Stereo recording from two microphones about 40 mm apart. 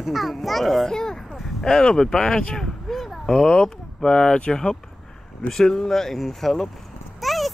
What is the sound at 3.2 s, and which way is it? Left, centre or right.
Speech, centre.